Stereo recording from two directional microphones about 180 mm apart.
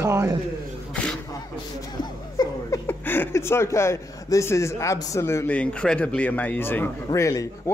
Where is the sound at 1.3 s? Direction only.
20° left (ahead or behind).